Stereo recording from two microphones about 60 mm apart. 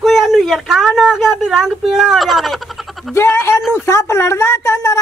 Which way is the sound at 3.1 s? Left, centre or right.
Left.